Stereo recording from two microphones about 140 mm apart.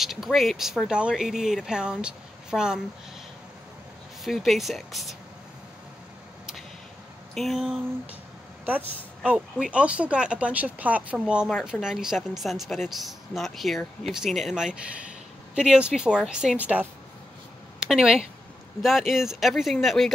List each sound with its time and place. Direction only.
0.0 s speech: centre (ahead or behind)
4.2 s speech: centre (ahead or behind)
7.3 s speech: centre (ahead or behind)